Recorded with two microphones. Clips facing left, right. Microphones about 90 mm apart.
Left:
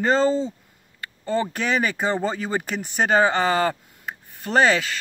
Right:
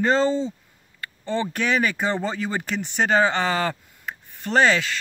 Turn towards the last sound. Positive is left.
turn(degrees=5)  # may be behind; listen again after turning